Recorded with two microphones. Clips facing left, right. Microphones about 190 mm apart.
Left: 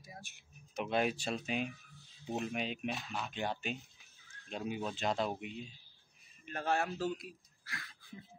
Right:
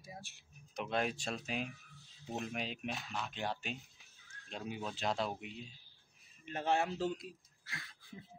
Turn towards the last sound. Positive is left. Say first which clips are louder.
# left 2 dB
turn(degrees=-20)  # may be behind; listen again after turning